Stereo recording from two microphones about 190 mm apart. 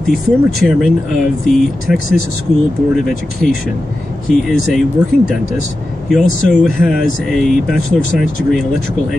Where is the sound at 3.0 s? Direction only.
Centre (ahead or behind).